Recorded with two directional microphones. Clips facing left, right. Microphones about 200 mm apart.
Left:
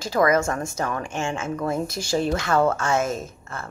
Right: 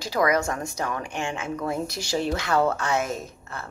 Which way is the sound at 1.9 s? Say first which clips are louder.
Left 3 dB; 50° left (ahead or behind).